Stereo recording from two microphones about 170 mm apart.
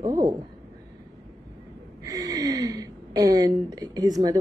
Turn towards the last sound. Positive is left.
turn(degrees=-20)  # may be behind; listen again after turning